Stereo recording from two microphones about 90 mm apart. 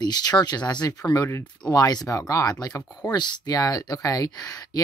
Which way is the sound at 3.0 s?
50° left (ahead or behind).